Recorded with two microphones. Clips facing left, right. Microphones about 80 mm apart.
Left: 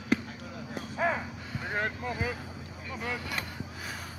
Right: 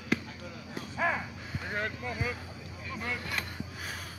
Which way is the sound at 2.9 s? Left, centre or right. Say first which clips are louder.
Left 1 dB; centre.